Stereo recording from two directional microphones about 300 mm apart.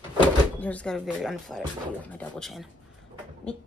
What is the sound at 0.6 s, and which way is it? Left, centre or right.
Speech, centre.